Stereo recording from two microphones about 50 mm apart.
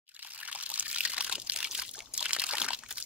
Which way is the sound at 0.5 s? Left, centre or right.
Right.